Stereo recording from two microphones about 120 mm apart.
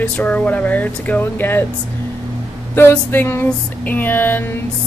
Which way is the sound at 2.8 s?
20° left (ahead or behind).